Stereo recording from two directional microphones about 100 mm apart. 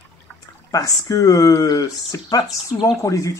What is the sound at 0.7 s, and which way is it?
Speech, 35° left (ahead or behind).